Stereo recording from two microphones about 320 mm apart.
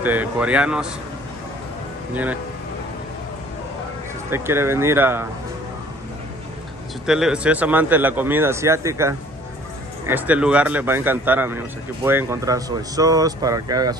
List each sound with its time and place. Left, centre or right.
0.0 s a man's voice: centre
4.3 s a man's voice: centre
7.1 s a man's voice: centre